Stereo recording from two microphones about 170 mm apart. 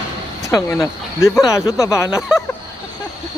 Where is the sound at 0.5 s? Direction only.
15° left (ahead or behind).